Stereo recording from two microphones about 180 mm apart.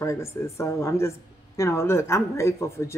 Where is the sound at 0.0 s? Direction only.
15° left (ahead or behind).